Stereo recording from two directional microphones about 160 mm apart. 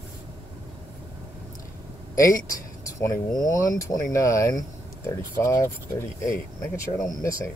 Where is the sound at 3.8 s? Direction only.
20° left (ahead or behind).